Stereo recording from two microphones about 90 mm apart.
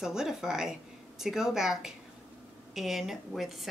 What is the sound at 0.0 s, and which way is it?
Speech, 5° right (ahead or behind).